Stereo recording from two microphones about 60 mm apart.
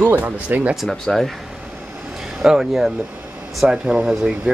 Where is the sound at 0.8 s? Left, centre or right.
Centre.